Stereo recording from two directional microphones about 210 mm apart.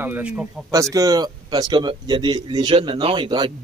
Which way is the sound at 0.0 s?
5° right (ahead or behind).